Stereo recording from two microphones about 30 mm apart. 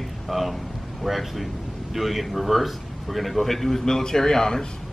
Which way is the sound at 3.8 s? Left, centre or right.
Centre.